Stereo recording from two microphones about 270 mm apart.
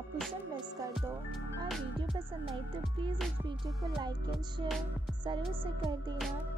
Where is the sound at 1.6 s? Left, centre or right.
Centre.